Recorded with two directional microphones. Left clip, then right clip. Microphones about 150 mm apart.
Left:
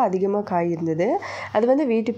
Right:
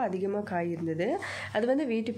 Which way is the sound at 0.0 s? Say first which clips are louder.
Left 9 dB; 20° left (ahead or behind).